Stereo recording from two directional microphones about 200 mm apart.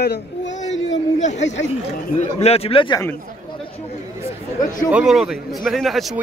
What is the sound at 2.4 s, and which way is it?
Speech, 30° left (ahead or behind).